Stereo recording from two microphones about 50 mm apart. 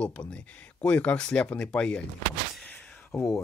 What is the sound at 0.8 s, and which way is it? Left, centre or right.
Speech, left.